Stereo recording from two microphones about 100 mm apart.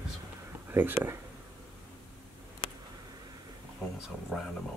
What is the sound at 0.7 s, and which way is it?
Speech, 20° right (ahead or behind).